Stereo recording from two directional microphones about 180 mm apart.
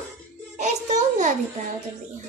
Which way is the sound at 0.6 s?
40° right (ahead or behind).